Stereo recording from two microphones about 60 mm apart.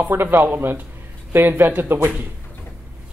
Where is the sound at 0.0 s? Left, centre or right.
Right.